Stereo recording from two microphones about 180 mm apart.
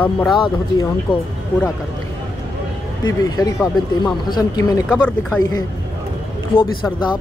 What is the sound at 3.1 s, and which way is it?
Speech, 20° left (ahead or behind).